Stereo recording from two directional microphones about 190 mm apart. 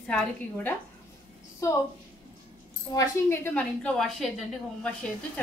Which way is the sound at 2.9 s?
15° left (ahead or behind).